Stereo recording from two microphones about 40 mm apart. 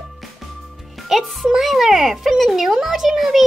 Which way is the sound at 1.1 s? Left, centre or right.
Centre.